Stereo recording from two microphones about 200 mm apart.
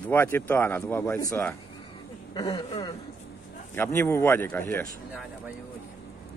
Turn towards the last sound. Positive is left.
turn(degrees=10)  # may be behind; listen again after turning